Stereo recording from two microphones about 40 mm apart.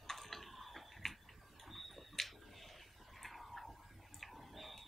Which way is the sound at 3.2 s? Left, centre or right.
Centre.